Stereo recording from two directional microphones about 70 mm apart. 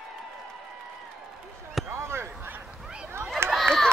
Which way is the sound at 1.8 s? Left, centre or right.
Right.